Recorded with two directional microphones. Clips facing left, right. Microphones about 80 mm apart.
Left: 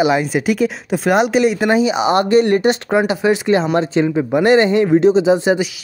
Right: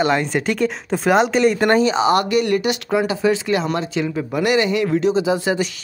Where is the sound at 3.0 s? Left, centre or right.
Left.